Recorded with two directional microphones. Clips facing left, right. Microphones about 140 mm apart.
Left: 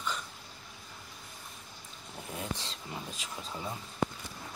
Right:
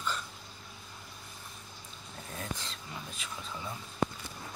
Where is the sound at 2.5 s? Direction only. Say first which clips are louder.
Left 2 dB; 30° left (ahead or behind).